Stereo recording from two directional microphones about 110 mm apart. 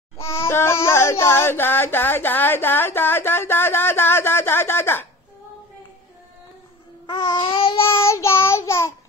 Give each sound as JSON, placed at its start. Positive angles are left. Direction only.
{"t": 0.2, "sound": "a sound", "side_deg": 25}
{"t": 7.1, "sound": "babbling", "side_deg": 40}
{"t": 7.4, "sound": "babbling", "side_deg": 55}
{"t": 8.0, "sound": "child singing", "side_deg": 25}